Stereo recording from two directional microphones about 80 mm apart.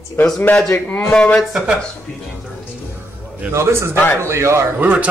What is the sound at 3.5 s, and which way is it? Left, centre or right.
Speech, right.